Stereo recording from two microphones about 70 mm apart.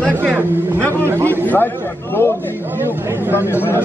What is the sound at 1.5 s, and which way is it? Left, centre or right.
Speech, left.